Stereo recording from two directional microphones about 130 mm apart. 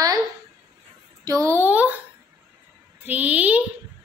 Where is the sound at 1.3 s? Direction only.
25° right (ahead or behind).